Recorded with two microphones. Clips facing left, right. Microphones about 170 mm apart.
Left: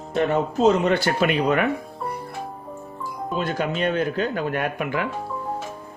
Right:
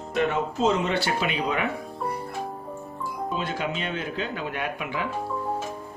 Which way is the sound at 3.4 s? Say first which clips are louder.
Left 6 dB; 45° left (ahead or behind).